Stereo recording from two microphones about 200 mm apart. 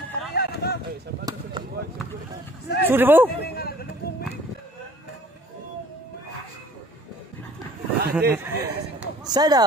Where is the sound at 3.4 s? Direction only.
50° left (ahead or behind).